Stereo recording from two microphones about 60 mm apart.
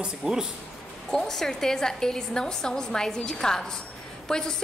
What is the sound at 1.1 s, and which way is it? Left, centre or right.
A woman's voice, centre.